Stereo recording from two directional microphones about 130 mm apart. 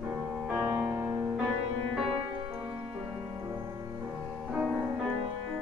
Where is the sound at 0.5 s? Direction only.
15° right (ahead or behind).